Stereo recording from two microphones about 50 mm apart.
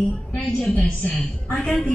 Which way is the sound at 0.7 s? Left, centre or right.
Left.